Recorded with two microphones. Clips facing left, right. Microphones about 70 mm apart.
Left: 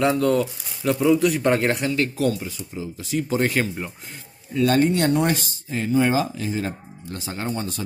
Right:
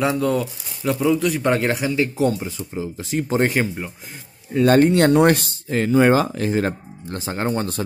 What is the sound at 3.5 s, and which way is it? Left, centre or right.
Speech, centre.